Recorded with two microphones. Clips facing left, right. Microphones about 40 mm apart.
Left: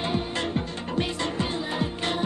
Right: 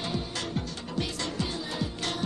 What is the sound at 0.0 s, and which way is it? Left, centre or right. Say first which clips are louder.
Music: left 6 dB; left.